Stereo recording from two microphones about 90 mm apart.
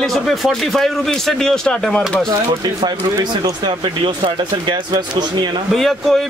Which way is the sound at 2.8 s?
55° right (ahead or behind).